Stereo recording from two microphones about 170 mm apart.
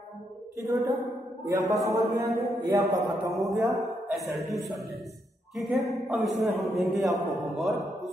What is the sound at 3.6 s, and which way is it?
Speech, centre (ahead or behind).